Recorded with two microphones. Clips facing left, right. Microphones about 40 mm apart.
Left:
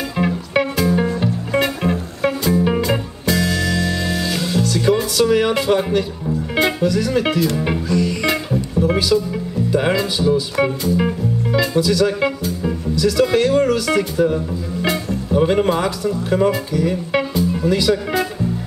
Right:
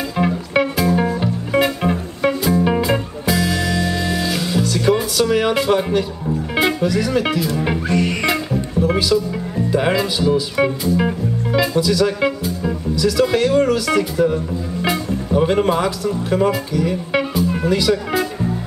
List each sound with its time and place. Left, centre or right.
0.2 s music: centre
5.2 s speech: centre
7.9 s music: right
8.7 s music: centre
9.7 s speech: centre